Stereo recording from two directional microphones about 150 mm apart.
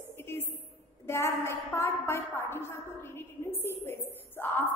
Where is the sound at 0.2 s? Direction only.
15° left (ahead or behind).